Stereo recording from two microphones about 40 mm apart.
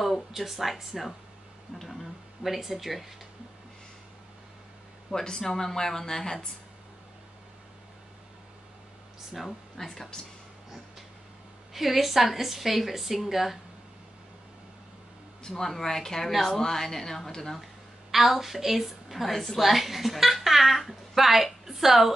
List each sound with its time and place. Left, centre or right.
0.0 s a woman's voice: centre
1.7 s speech: right
2.4 s a woman's voice: centre
5.1 s a woman's voice: centre
9.8 s a woman's voice: centre
11.7 s a woman's voice: centre
15.4 s a woman's voice: centre
18.1 s a woman's voice: centre